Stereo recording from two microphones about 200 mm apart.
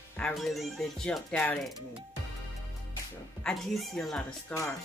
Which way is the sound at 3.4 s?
Centre (ahead or behind).